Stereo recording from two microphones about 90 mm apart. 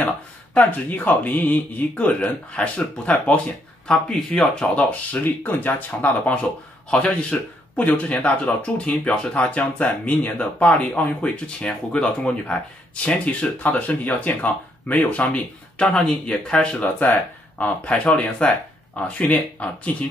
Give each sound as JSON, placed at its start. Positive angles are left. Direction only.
{"t": 0.6, "sound": "speech", "side_deg": 20}